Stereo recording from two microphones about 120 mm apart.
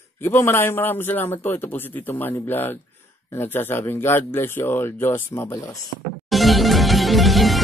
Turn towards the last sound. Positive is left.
turn(degrees=0)  # may be behind; listen again after turning